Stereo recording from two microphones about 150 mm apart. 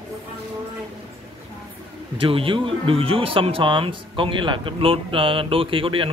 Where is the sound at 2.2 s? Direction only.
35° right (ahead or behind).